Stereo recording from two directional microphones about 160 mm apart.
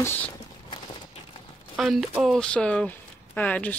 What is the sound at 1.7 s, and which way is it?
Speech, 5° right (ahead or behind).